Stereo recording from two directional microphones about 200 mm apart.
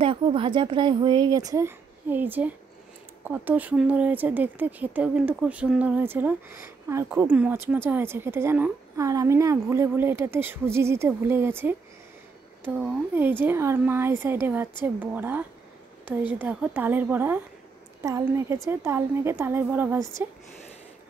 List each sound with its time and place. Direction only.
0.0 s a woman's voice: 25° right (ahead or behind)